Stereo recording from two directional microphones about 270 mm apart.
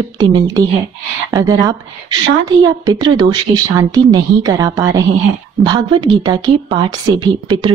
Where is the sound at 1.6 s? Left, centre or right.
Centre.